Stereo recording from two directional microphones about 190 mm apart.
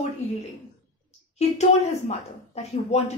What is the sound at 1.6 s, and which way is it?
A woman's voice, 35° left (ahead or behind).